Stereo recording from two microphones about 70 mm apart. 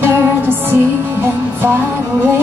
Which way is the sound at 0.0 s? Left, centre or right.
Right.